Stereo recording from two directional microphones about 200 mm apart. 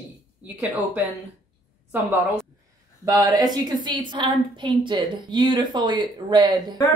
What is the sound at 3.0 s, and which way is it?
A woman's voice, 20° right (ahead or behind).